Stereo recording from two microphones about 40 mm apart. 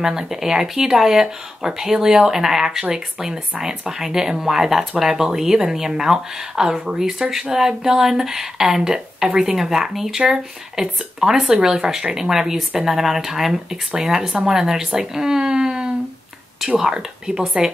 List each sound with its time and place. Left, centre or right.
0.0 s speech: centre